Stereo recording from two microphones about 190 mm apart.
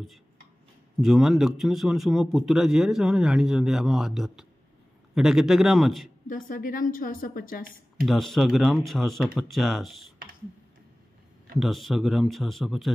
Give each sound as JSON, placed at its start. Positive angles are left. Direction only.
{"t": 1.0, "sound": "speech", "side_deg": 0}
{"t": 6.2, "sound": "a woman's voice", "side_deg": 45}
{"t": 8.0, "sound": "speech", "side_deg": 0}
{"t": 11.6, "sound": "speech", "side_deg": 0}